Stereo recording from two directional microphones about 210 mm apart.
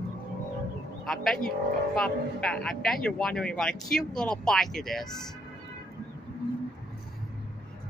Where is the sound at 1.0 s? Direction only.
Centre (ahead or behind).